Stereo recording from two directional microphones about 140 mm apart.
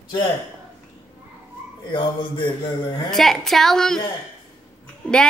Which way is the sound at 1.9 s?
35° left (ahead or behind).